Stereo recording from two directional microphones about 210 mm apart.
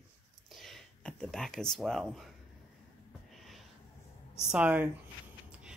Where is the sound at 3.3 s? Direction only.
Centre (ahead or behind).